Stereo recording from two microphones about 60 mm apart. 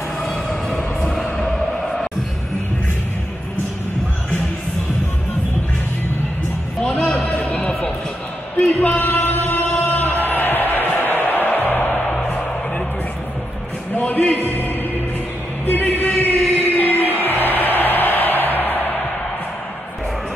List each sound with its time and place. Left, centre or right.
0.2 s music: centre
7.3 s a sound: left
11.2 s music: left
12.3 s music: left
13.9 s music: left
15.6 s a sound: left
16.0 s music: left